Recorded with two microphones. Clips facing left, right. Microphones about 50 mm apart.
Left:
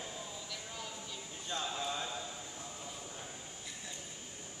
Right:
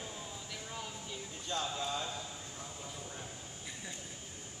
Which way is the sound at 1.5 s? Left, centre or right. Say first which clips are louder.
Right 1 dB; centre.